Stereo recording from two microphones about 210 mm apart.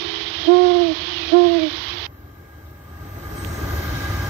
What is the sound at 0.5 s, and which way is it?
Hoot, 60° right (ahead or behind).